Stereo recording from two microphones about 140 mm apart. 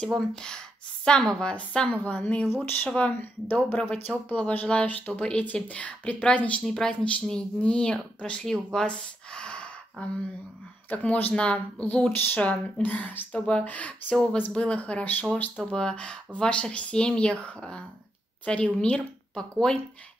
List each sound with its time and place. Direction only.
0.0 s speech: 5° left (ahead or behind)
8.7 s a sound: 5° left (ahead or behind)
10.9 s a woman's voice: 10° left (ahead or behind)